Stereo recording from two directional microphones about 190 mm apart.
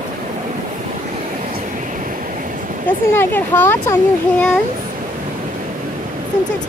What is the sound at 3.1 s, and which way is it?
Speech, 10° left (ahead or behind).